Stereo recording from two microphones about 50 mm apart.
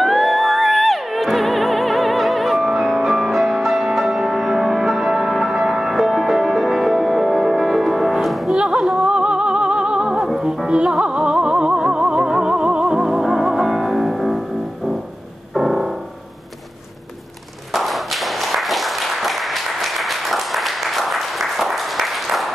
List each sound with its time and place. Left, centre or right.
0.0 s music: centre
8.8 s music: centre
10.2 s music: centre
10.7 s music: centre
15.5 s music: centre
17.7 s a sound: centre